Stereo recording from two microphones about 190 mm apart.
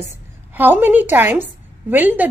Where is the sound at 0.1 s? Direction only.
10° right (ahead or behind).